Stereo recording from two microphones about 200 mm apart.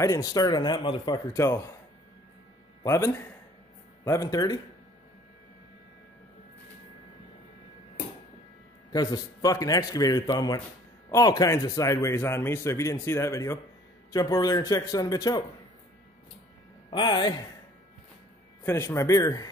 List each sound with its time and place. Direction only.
0.0 s a man's voice: 15° left (ahead or behind)
2.8 s a man's voice: 15° left (ahead or behind)
8.9 s a man's voice: 20° left (ahead or behind)
16.9 s a man's voice: 20° left (ahead or behind)
18.7 s a man's voice: 15° left (ahead or behind)